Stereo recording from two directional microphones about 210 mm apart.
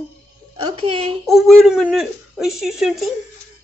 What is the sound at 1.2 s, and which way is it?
Speech, centre (ahead or behind).